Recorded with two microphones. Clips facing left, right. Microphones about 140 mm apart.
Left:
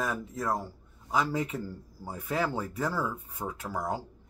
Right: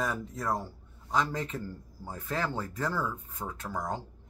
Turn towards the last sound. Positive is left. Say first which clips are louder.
# left 2 dB
turn(degrees=10)  # may be behind; listen again after turning